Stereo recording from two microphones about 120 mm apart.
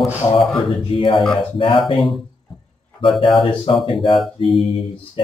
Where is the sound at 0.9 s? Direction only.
45° left (ahead or behind).